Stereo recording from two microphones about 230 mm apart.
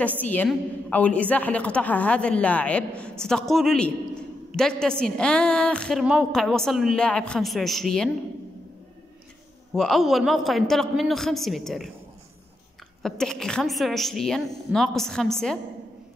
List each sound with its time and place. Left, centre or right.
0.2 s a man's voice: centre
9.8 s a man's voice: centre
13.0 s a man's voice: centre